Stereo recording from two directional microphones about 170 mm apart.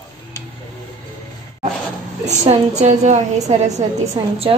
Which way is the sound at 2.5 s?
40° right (ahead or behind).